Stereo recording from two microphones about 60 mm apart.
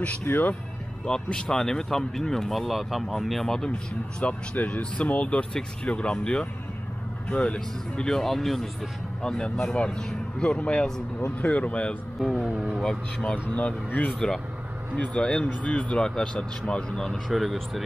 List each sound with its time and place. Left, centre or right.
0.3 s speech: left
1.0 s speech: centre
4.2 s speech: left; by 8.6 s centre
9.2 s speech: centre
12.2 s speech: centre
12.8 s speech: centre
17.3 s speech: centre